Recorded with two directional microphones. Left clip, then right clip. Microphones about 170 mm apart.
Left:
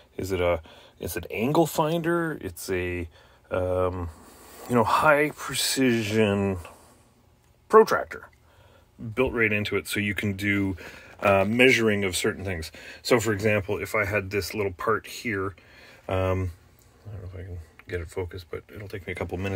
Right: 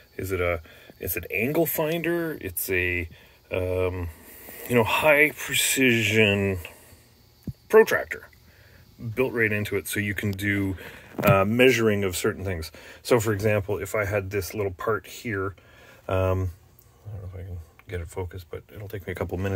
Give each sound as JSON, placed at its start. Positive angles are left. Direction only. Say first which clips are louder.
{"t": 0.1, "sound": "speech", "louder": "left 1 dB", "side_deg": 5}
{"t": 2.2, "sound": "speech", "louder": "even", "side_deg": 40}
{"t": 3.9, "sound": "a sound", "louder": "even", "side_deg": -5}
{"t": 4.6, "sound": "speech", "louder": "even", "side_deg": 40}
{"t": 6.2, "sound": "speech", "louder": "right 2 dB", "side_deg": -5}
{"t": 9.1, "sound": "speech", "louder": "even", "side_deg": -5}
{"t": 18.2, "sound": "speech", "louder": "left 2 dB", "side_deg": 5}
{"t": 18.9, "sound": "speech", "louder": "right 2 dB", "side_deg": -15}